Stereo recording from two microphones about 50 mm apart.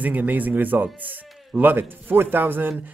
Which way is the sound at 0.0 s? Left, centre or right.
Right.